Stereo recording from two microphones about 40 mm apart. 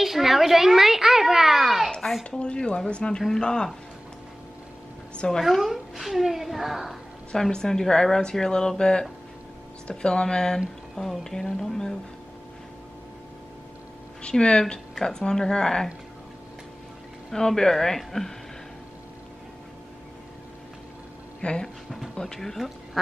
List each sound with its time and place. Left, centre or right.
0.0 s a sound: centre
2.0 s a sound: centre
2.3 s speech: left
5.4 s a child's voice: centre
7.5 s speech: centre
14.4 s speech: left
17.3 s speech: centre
21.4 s speech: left
22.2 s speech: centre